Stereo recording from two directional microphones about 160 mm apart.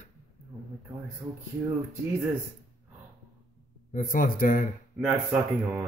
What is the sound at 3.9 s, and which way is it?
Speech, 60° left (ahead or behind).